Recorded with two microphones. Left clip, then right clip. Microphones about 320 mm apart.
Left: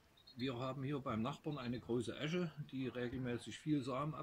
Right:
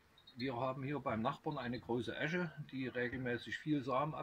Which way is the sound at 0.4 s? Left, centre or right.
Centre.